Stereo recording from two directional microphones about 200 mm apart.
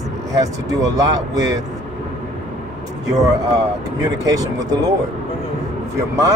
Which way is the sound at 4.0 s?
15° right (ahead or behind).